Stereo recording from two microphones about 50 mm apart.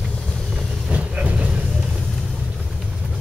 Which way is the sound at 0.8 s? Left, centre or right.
Right.